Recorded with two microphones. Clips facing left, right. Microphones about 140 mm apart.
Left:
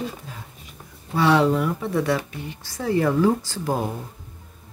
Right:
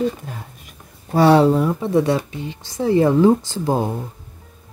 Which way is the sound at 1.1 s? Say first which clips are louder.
Right 5 dB; 40° right (ahead or behind).